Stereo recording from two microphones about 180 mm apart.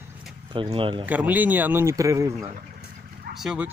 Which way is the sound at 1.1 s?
10° right (ahead or behind).